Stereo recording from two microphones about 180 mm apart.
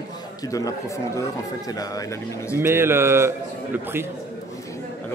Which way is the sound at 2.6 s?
15° right (ahead or behind).